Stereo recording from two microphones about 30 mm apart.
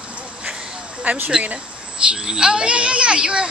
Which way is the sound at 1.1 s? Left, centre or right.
Right.